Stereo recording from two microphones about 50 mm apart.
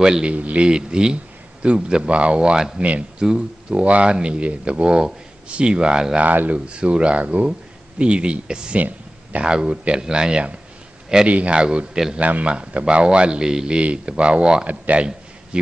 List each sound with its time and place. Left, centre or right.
0.0 s a man's voice: centre
6.2 s a man's voice: right
14.7 s speech: right
15.5 s a man's voice: centre